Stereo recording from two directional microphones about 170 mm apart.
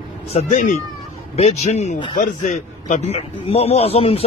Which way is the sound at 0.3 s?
45° left (ahead or behind).